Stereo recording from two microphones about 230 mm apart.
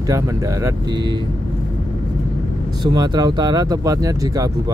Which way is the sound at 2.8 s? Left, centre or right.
Centre.